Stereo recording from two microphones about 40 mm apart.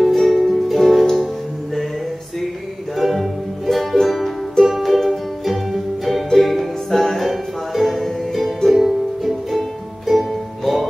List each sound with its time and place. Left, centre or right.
0.1 s music: centre
0.4 s music: centre
3.0 s music: centre
8.6 s ukulele: centre